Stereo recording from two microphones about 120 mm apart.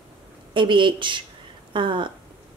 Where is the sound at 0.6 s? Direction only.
40° right (ahead or behind).